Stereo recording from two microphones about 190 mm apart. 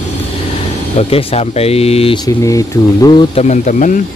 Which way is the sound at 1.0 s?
30° left (ahead or behind).